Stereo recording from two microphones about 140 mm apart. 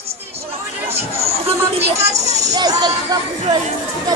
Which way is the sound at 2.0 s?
50° right (ahead or behind).